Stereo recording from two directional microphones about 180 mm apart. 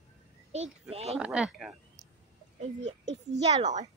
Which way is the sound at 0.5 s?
35° right (ahead or behind).